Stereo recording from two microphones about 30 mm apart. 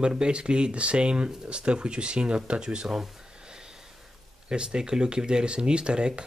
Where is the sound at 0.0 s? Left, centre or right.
Right.